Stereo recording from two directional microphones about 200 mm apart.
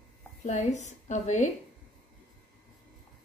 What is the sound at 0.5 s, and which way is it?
A woman's voice, 35° left (ahead or behind).